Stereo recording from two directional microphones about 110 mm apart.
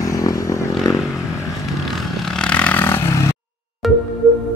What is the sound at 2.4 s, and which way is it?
Vehicle, 10° left (ahead or behind).